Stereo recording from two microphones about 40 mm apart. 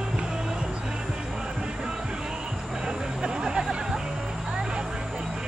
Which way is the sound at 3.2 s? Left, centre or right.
Centre.